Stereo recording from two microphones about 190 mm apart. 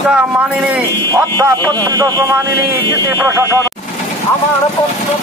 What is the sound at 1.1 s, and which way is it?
Speech, 15° right (ahead or behind).